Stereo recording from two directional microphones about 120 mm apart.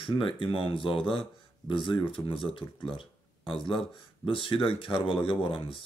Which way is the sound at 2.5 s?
45° left (ahead or behind).